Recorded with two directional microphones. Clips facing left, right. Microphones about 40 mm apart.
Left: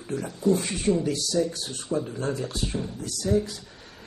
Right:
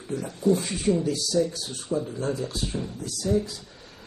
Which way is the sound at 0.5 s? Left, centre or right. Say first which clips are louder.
Even; left.